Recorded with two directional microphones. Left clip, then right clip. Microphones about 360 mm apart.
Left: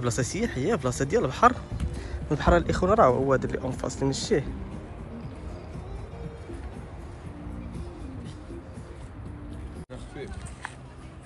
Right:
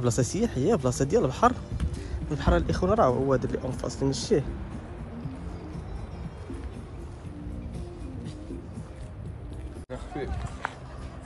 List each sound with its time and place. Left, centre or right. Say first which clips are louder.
0.0 s speech: right 1 dB; centre
9.8 s hubbub: right 6 dB; right